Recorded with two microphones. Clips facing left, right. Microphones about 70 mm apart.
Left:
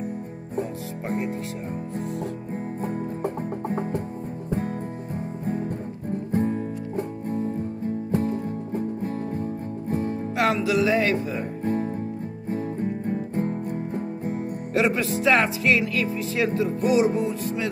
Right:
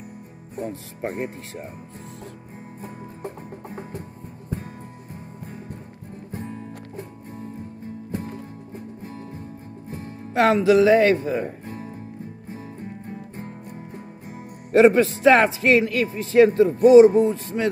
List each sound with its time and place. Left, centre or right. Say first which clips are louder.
1.0 s music: even; right
2.0 s music: left 10 dB; left
10.3 s music: right 6 dB; right
11.6 s guitar: left 10 dB; left
12.4 s music: left 12 dB; left
14.7 s music: right 8 dB; right